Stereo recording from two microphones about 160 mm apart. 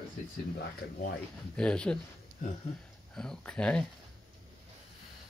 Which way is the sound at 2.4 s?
55° left (ahead or behind).